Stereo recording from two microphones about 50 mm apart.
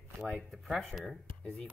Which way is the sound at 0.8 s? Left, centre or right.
Centre.